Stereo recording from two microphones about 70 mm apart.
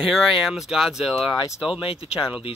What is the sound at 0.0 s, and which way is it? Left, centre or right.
Speech, centre.